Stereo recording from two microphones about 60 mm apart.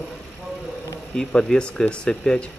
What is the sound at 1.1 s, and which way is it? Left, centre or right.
Speech, centre.